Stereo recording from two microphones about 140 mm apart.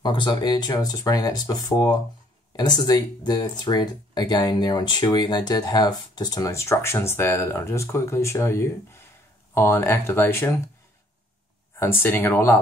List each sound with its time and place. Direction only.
0.0 s speech: 30° left (ahead or behind)
11.8 s speech: 15° left (ahead or behind)